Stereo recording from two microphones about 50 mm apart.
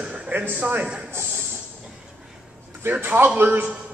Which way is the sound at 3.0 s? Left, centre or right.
Right.